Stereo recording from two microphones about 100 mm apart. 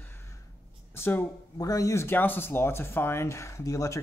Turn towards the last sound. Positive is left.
turn(degrees=35)  # may be behind; listen again after turning